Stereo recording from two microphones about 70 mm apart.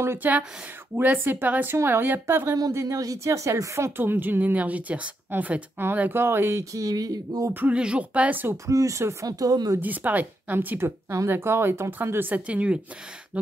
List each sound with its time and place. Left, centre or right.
0.2 s speech: right
2.7 s speech: right
7.6 s speech: centre
8.6 s speech: right
9.8 s speech: right
11.1 s speech: right
12.4 s speech: centre